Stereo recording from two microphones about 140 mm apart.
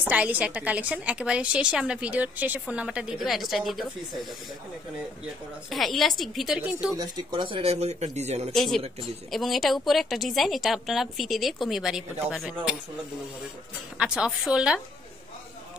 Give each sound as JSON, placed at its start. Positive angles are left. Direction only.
{"t": 0.1, "sound": "a woman's voice", "side_deg": -10}
{"t": 5.7, "sound": "a woman's voice", "side_deg": 0}
{"t": 6.6, "sound": "a woman's voice", "side_deg": -10}
{"t": 7.0, "sound": "speech", "side_deg": -30}
{"t": 8.5, "sound": "a woman's voice", "side_deg": 0}
{"t": 13.9, "sound": "a woman's voice", "side_deg": -5}